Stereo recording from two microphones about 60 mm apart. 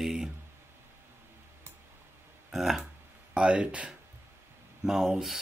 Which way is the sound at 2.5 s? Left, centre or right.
Centre.